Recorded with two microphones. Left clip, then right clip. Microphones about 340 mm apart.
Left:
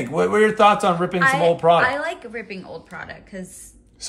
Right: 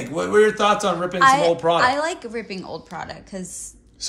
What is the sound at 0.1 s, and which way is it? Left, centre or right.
A man's voice, left.